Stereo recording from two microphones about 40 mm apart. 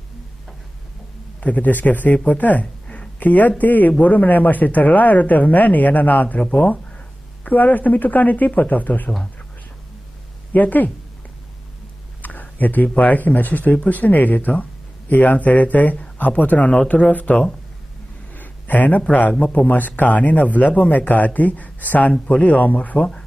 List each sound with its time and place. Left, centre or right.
1.4 s speech: left
2.6 s a sound: left
3.2 s speech: left
10.5 s speech: left
12.2 s speech: left
18.3 s a sound: left
19.4 s speech: left
19.7 s speech: left
22.9 s speech: left